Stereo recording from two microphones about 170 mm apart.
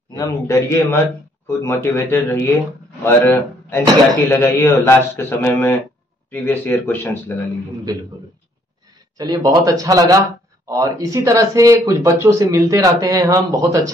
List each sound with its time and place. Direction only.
0.2 s a man's voice: 20° left (ahead or behind)
9.2 s speech: 20° right (ahead or behind)